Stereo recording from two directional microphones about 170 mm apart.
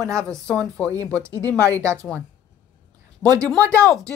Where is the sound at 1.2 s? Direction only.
15° right (ahead or behind).